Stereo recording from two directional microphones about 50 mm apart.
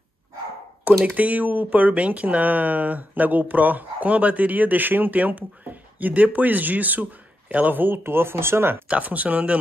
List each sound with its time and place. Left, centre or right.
1.0 s speech: right
8.8 s speech: right